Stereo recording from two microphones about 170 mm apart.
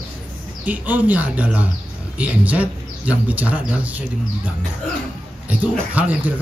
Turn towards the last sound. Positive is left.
turn(degrees=-10)  # may be behind; listen again after turning